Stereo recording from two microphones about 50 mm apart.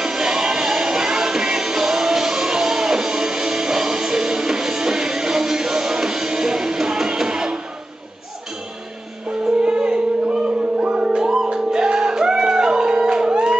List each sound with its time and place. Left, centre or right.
0.0 s music: centre
9.6 s music: centre